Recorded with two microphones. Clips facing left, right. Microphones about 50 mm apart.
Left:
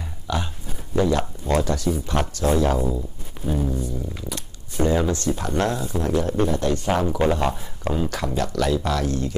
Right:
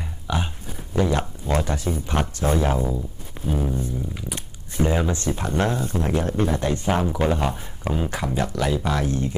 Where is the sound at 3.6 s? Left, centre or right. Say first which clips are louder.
Even; right.